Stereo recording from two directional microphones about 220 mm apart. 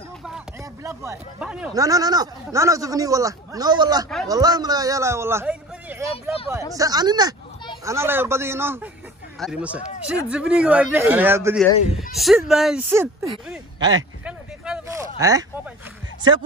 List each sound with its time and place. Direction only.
0.8 s speech: 10° right (ahead or behind)
1.7 s a man's voice: 15° right (ahead or behind)
14.2 s a sound: 5° right (ahead or behind)